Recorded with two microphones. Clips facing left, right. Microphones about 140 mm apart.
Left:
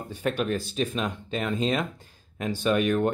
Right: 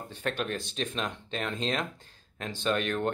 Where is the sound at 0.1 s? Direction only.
10° left (ahead or behind).